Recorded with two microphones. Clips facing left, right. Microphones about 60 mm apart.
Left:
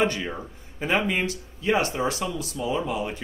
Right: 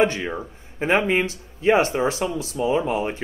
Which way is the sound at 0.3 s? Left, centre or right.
Right.